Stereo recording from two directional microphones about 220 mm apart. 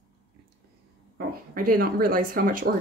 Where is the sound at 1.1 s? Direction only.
40° right (ahead or behind).